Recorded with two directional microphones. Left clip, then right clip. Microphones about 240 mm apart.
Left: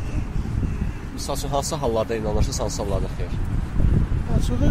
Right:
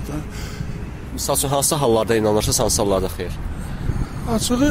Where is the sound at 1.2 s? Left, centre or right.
Right.